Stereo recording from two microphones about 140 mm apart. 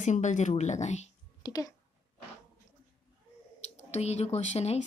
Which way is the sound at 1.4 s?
30° left (ahead or behind).